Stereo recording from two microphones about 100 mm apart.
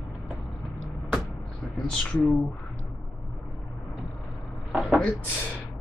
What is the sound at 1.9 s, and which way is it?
Speech, 5° left (ahead or behind).